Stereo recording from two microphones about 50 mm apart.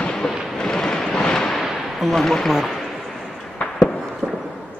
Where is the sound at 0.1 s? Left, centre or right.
Centre.